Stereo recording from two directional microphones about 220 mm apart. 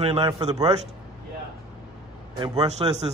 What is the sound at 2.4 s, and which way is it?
Speech, 20° right (ahead or behind).